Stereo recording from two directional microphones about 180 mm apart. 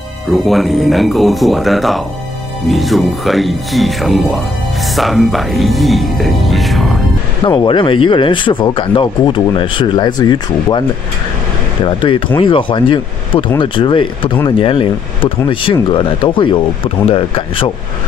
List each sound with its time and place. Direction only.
0.3 s speech: centre (ahead or behind)
7.4 s speech: 25° left (ahead or behind)
11.8 s speech: 30° left (ahead or behind)